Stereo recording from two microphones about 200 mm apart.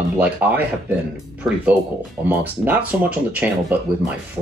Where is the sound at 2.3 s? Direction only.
10° right (ahead or behind).